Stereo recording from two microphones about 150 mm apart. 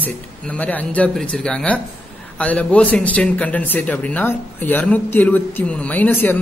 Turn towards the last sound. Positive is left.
turn(degrees=15)  # may be behind; listen again after turning